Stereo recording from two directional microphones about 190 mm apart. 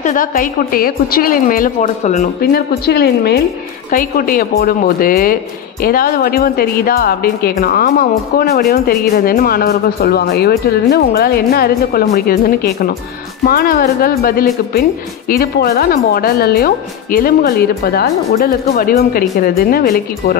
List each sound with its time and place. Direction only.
0.0 s a woman's voice: 45° left (ahead or behind)
2.9 s a woman's voice: 55° left (ahead or behind)